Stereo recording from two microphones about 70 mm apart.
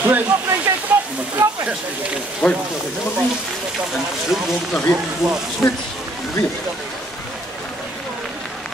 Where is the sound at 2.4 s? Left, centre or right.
Centre.